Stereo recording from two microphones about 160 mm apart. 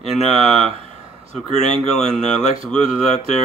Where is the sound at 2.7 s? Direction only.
5° left (ahead or behind).